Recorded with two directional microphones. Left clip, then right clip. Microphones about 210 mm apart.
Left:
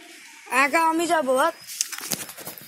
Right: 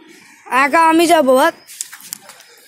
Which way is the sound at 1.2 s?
45° right (ahead or behind).